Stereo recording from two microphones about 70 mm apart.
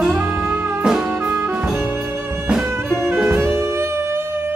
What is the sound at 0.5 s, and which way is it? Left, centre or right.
Music, right.